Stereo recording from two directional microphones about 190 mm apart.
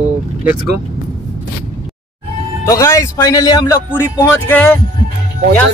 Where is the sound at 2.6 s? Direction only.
15° left (ahead or behind).